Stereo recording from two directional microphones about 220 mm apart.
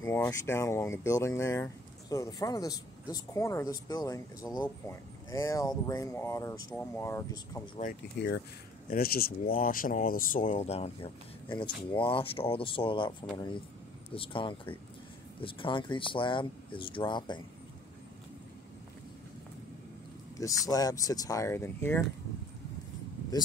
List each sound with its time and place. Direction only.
0.0 s speech: 10° left (ahead or behind)
7.8 s speech: 50° left (ahead or behind); by 13.1 s 25° left (ahead or behind)
14.1 s speech: 25° left (ahead or behind)
20.3 s speech: 15° left (ahead or behind)
23.3 s speech: 15° left (ahead or behind)